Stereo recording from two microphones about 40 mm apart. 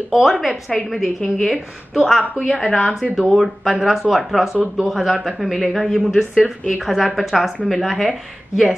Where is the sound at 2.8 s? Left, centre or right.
Centre.